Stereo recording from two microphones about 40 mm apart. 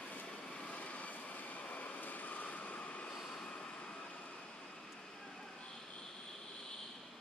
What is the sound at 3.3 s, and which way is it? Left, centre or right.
Vehicle, left.